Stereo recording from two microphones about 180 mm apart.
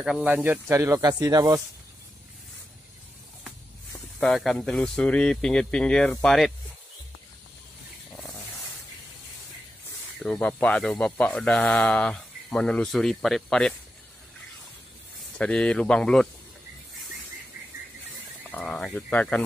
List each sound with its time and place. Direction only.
0.0 s speech: 5° right (ahead or behind)
4.2 s speech: centre (ahead or behind)
10.1 s speech: 5° left (ahead or behind)
15.3 s speech: 5° left (ahead or behind)
18.5 s speech: 5° left (ahead or behind)